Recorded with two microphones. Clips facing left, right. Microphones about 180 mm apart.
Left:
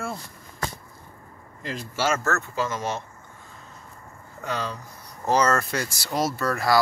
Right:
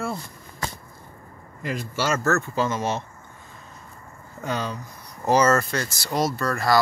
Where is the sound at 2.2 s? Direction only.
30° right (ahead or behind).